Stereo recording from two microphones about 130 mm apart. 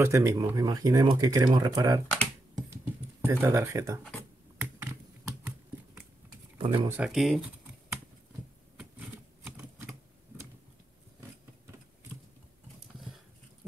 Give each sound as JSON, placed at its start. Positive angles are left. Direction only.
{"t": 0.0, "sound": "speech", "side_deg": -25}
{"t": 2.0, "sound": "computer keyboard", "side_deg": 5}
{"t": 3.3, "sound": "speech", "side_deg": -20}
{"t": 6.6, "sound": "speech", "side_deg": -40}
{"t": 7.1, "sound": "speech", "side_deg": 0}
{"t": 8.7, "sound": "typewriter", "side_deg": -5}